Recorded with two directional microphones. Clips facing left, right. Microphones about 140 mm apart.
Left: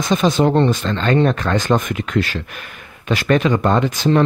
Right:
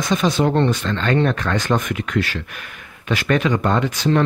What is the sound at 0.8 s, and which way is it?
Speech, 30° left (ahead or behind).